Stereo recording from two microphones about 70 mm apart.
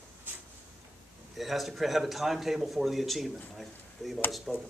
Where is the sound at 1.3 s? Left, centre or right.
Centre.